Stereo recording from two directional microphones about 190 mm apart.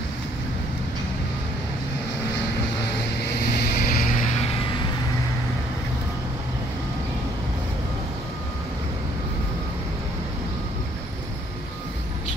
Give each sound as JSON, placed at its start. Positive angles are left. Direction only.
{"t": 3.3, "sound": "vehicle", "side_deg": 50}